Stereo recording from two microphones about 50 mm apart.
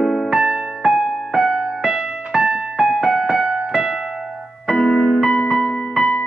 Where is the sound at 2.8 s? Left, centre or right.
Centre.